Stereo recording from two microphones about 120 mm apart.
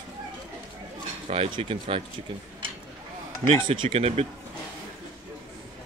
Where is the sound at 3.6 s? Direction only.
45° right (ahead or behind).